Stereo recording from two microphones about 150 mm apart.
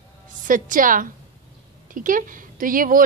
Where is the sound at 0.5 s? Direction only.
65° right (ahead or behind).